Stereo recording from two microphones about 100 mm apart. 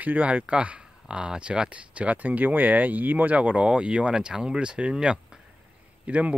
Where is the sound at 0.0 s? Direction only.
15° right (ahead or behind).